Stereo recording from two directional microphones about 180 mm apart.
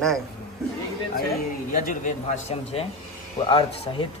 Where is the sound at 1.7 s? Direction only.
50° left (ahead or behind); by 3.5 s 35° left (ahead or behind).